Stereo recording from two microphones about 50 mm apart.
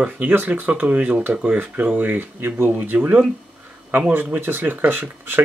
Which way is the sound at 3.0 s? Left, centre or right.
Right.